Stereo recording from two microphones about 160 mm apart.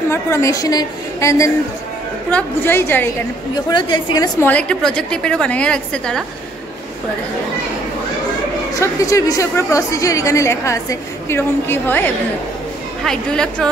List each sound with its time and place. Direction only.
0.1 s a woman's voice: 20° left (ahead or behind)
3.7 s a woman's voice: 25° left (ahead or behind)
4.4 s a woman's voice: 10° left (ahead or behind)
8.7 s a woman's voice: 20° left (ahead or behind)